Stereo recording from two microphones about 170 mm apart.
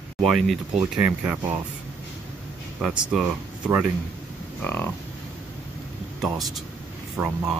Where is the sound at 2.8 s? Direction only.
5° right (ahead or behind).